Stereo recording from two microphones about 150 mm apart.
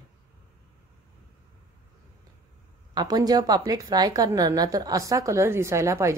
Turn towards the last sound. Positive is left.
turn(degrees=-20)  # may be behind; listen again after turning